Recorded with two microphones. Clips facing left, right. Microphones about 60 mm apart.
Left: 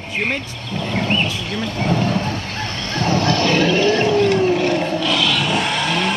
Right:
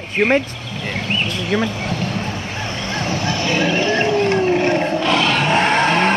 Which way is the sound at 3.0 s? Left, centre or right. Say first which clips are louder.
Left 5 dB; right.